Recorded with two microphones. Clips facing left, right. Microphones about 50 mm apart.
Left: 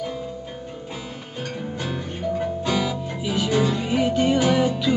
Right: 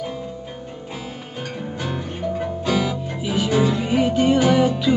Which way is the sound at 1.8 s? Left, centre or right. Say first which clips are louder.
Right 4 dB; centre.